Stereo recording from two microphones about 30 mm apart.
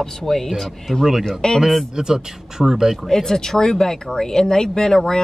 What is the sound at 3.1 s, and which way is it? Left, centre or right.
Speech, centre.